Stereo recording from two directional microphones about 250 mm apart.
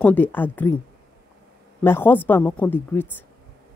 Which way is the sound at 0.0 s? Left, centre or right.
Centre.